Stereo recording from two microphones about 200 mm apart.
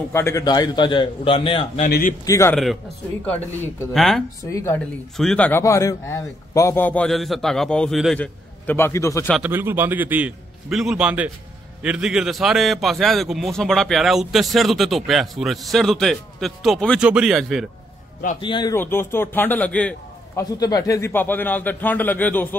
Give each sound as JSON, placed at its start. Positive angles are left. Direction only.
{"t": 0.1, "sound": "a man's voice", "side_deg": 15}
{"t": 1.9, "sound": "speech", "side_deg": 50}
{"t": 2.2, "sound": "speech", "side_deg": 15}
{"t": 2.5, "sound": "a man's voice", "side_deg": 0}
{"t": 3.9, "sound": "a man's voice", "side_deg": 0}
{"t": 4.5, "sound": "speech", "side_deg": 15}
{"t": 9.3, "sound": "a man's voice", "side_deg": -10}
{"t": 18.4, "sound": "a man's voice", "side_deg": 20}
{"t": 18.8, "sound": "speech", "side_deg": 10}
{"t": 20.5, "sound": "speech", "side_deg": 20}